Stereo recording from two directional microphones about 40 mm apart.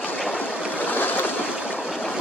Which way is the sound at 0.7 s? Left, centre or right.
Left.